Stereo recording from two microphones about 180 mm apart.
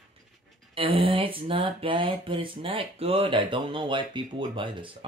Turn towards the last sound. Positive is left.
turn(degrees=-30)  # may be behind; listen again after turning